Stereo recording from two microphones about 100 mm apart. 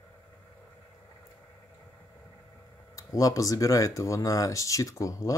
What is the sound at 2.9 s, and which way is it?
Speech, 35° left (ahead or behind).